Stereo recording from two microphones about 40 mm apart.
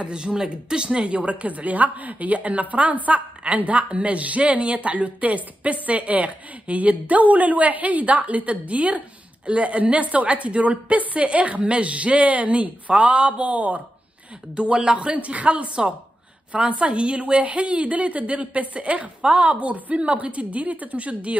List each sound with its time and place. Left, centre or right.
0.0 s a woman's voice: right